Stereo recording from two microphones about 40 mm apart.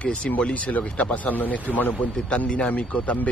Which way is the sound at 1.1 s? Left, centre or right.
Left.